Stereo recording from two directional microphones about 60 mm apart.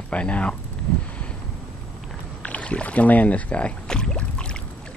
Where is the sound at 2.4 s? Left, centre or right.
Left.